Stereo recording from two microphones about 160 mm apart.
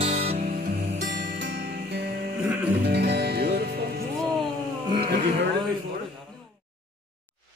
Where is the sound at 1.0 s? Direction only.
75° right (ahead or behind).